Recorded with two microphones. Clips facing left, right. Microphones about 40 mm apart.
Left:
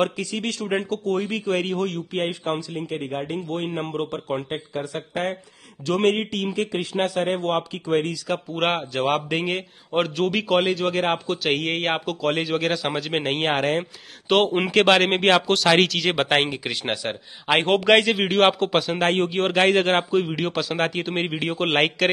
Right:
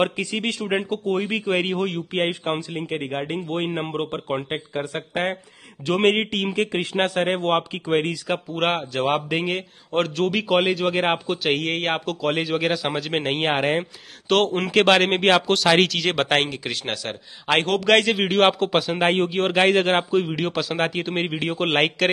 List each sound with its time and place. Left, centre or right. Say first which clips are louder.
0.0 s speech: right 1 dB; right
2.0 s a man's voice: right 2 dB; right
4.5 s a man's voice: right 1 dB; right
8.5 s a man's voice: even; centre
14.3 s a man's voice: even; centre